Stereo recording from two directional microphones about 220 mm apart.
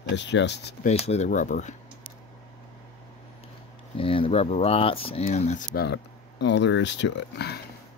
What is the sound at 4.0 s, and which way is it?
Speech, 25° left (ahead or behind).